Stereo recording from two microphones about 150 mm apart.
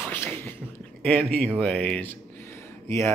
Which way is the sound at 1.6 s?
10° left (ahead or behind).